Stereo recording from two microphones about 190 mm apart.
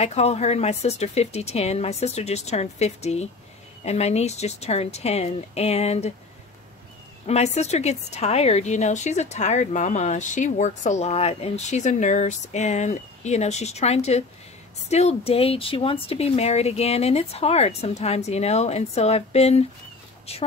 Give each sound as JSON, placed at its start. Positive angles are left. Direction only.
{"t": 0.0, "sound": "a woman's voice", "side_deg": 35}
{"t": 7.2, "sound": "a woman's voice", "side_deg": 35}